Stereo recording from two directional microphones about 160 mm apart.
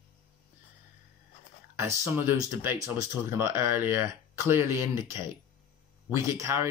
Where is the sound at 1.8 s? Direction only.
15° right (ahead or behind).